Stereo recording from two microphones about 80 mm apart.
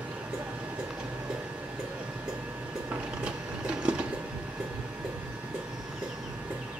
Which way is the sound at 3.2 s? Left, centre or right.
Centre.